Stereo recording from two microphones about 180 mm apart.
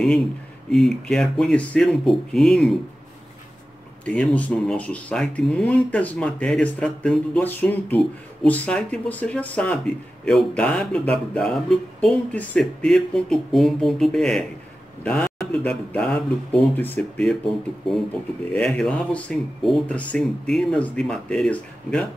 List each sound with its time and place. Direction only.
0.7 s speech: 5° left (ahead or behind)
4.0 s speech: 5° left (ahead or behind)
18.5 s speech: 5° left (ahead or behind)